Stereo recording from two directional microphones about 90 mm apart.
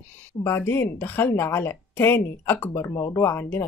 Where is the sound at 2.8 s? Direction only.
35° left (ahead or behind).